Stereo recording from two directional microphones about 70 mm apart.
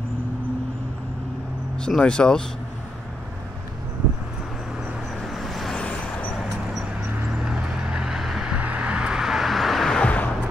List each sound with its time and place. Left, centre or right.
1.8 s speech: centre
5.2 s vehicle: centre
5.8 s vehicle: centre
6.7 s vehicle: centre
8.5 s vehicle: centre
10.0 s music: left